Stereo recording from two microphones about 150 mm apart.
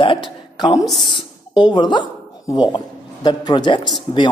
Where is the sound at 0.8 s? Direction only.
Centre (ahead or behind).